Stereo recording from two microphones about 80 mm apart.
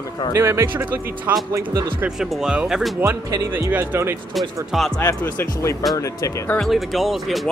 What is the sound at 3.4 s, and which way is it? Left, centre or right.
Speech, right.